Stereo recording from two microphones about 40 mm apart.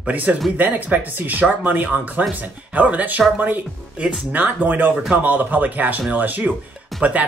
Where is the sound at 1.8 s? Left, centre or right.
Right.